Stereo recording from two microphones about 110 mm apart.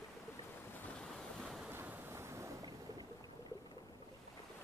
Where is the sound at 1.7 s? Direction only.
20° right (ahead or behind).